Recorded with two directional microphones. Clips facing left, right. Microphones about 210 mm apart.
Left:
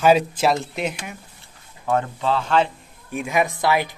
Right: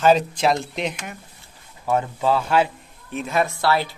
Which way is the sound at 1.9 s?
10° right (ahead or behind).